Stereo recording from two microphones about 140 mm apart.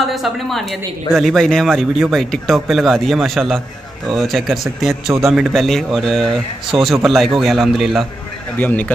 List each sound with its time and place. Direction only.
0.0 s a woman's voice: centre (ahead or behind)
8.5 s speech: 10° left (ahead or behind)